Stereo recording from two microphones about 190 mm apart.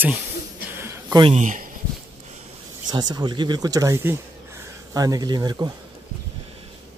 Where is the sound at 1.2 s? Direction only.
35° right (ahead or behind).